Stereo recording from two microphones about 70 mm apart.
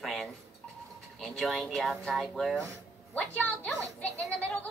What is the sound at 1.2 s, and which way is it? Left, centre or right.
Speech, centre.